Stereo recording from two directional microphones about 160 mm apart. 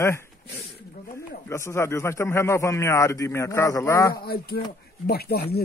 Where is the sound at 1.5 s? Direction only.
15° left (ahead or behind).